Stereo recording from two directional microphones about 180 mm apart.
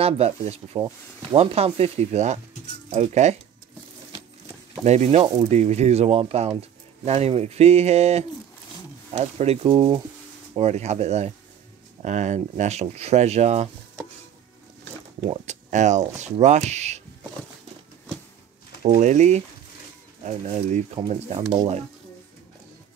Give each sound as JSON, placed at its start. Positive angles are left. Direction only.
{"t": 0.0, "sound": "speech", "side_deg": -35}
{"t": 4.8, "sound": "speech", "side_deg": -35}
{"t": 15.1, "sound": "speech", "side_deg": -35}
{"t": 18.9, "sound": "speech", "side_deg": -40}